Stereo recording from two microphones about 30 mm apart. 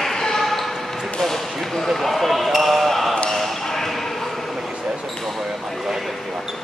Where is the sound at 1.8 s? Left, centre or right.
Centre.